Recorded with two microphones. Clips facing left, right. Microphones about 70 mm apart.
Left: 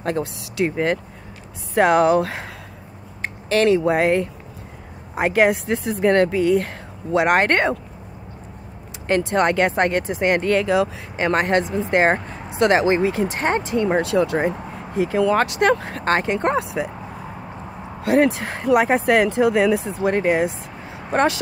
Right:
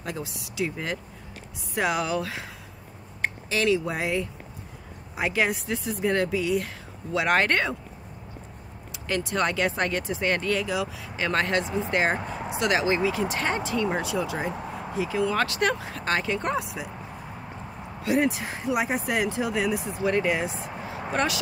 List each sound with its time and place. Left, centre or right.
0.0 s speech: left
3.4 s speech: left
5.1 s speech: left
6.0 s speech: left
7.2 s speech: left
7.4 s speech: left
9.0 s speech: left
10.4 s speech: left
11.1 s speech: left
13.8 s speech: left
14.1 s speech: left
18.0 s speech: left
19.8 s speech: left